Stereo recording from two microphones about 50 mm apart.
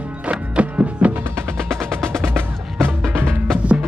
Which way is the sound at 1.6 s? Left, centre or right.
Centre.